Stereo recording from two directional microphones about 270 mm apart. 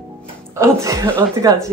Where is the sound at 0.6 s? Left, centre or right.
Centre.